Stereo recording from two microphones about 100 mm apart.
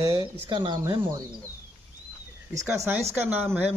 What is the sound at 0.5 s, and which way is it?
Speech, 50° right (ahead or behind).